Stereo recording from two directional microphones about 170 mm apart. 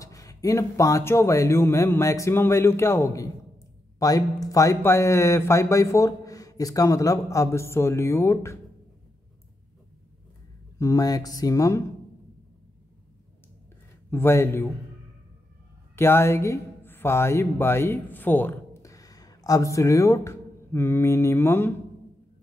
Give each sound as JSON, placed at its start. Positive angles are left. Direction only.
{"t": 0.0, "sound": "speech", "side_deg": 20}
{"t": 10.8, "sound": "speech", "side_deg": 20}
{"t": 14.1, "sound": "speech", "side_deg": 15}
{"t": 16.0, "sound": "speech", "side_deg": 15}